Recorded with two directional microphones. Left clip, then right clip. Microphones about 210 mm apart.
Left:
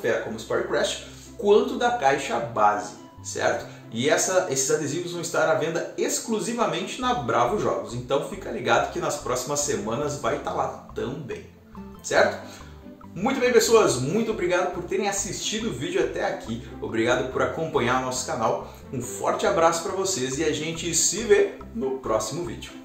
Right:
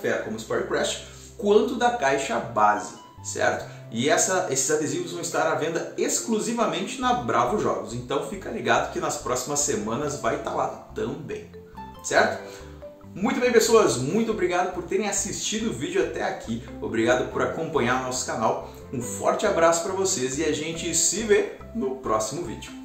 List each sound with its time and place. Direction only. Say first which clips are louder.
0.0 s a man's voice: left 1 dB; centre (ahead or behind)